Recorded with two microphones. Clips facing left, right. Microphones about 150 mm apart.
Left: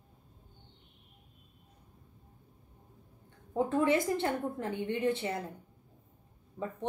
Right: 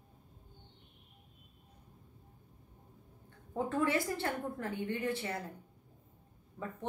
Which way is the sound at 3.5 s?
20° left (ahead or behind).